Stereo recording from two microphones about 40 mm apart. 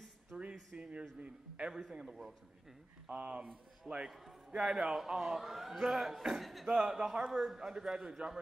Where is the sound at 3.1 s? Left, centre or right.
Right.